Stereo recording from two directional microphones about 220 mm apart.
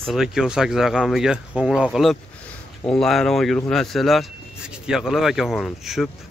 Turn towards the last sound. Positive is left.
turn(degrees=0)  # may be behind; listen again after turning